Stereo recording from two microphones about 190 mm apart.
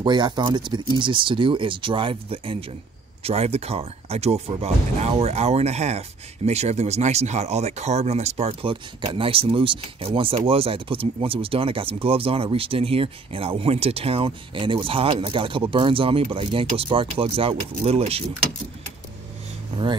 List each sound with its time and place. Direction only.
0.0 s speech: 25° right (ahead or behind)